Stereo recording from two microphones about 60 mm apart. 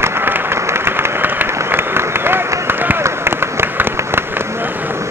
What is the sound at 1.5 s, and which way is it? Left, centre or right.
Applause, right.